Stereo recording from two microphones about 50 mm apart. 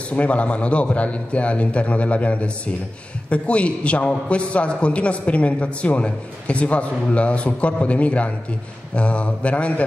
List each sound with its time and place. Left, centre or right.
0.1 s a man's voice: left